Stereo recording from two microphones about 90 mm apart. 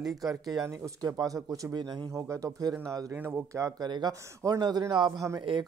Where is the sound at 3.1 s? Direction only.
25° right (ahead or behind).